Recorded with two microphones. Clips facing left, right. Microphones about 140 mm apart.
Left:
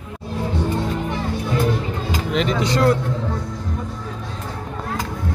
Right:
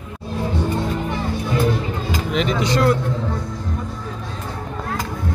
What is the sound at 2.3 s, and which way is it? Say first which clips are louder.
Speech: even; 35° left (ahead or behind).